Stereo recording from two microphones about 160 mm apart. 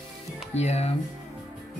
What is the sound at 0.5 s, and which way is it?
Speech, 40° left (ahead or behind).